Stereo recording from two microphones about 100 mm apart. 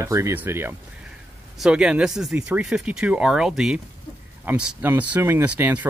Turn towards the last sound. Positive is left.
turn(degrees=-20)  # may be behind; listen again after turning